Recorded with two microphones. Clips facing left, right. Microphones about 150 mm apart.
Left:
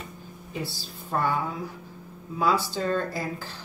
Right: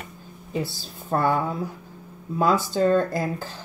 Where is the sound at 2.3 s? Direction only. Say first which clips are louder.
Right 4 dB; 45° right (ahead or behind).